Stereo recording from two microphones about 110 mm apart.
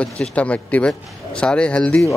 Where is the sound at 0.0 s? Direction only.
10° left (ahead or behind).